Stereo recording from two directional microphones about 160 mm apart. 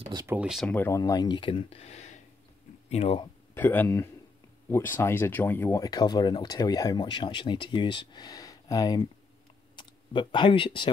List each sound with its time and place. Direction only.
0.3 s speech: 5° right (ahead or behind)
0.7 s speech: 15° left (ahead or behind); by 3.3 s 40° left (ahead or behind)
3.5 s speech: 10° left (ahead or behind); by 10.9 s 30° left (ahead or behind)